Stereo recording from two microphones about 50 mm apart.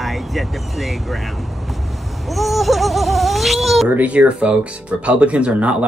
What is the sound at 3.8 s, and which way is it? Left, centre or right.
Speech, right.